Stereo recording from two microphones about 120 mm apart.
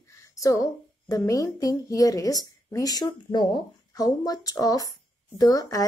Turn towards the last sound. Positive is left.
turn(degrees=30)  # may be behind; listen again after turning